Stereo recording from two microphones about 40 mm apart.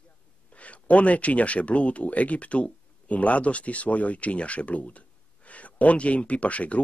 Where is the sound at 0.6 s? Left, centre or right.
Left.